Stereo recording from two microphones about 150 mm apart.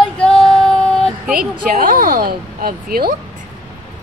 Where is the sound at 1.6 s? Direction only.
70° right (ahead or behind).